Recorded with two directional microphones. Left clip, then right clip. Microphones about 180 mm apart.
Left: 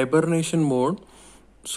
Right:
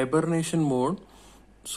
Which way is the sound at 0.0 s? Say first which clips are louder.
Left 4 dB; 25° left (ahead or behind).